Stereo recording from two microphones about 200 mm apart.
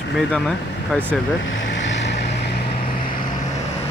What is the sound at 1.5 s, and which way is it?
Vehicle, 70° left (ahead or behind).